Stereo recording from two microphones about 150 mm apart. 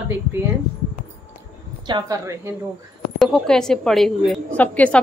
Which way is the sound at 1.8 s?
25° right (ahead or behind).